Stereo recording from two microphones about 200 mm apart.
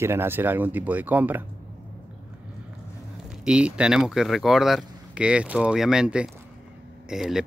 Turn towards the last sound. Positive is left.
turn(degrees=0)  # may be behind; listen again after turning